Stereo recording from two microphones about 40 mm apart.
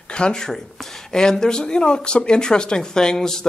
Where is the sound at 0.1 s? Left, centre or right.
Left.